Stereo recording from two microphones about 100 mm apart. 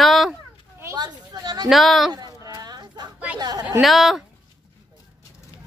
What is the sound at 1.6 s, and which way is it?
Speech, centre (ahead or behind).